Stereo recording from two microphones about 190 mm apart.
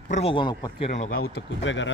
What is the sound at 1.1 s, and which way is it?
Speech, 85° left.